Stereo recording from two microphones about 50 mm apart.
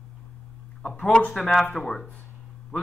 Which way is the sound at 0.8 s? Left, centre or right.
Centre.